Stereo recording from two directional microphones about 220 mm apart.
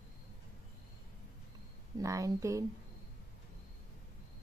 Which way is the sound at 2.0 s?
15° right (ahead or behind).